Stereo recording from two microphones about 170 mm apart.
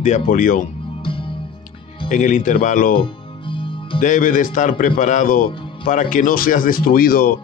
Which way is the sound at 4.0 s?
50° left (ahead or behind).